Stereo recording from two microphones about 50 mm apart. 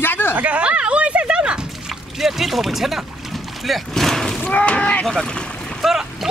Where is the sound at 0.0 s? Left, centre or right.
Left.